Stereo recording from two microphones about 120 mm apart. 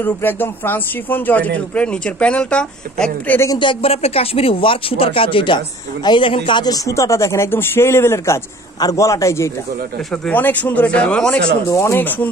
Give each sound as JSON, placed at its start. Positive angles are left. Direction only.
{"t": 0.0, "sound": "a man's voice", "side_deg": 15}
{"t": 3.5, "sound": "speech", "side_deg": 50}
{"t": 10.1, "sound": "a man's voice", "side_deg": 10}
{"t": 11.7, "sound": "speech", "side_deg": 20}